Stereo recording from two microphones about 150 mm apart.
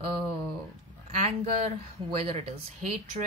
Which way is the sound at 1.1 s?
45° right (ahead or behind).